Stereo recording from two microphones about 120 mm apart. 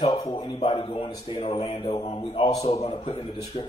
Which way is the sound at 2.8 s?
60° left (ahead or behind).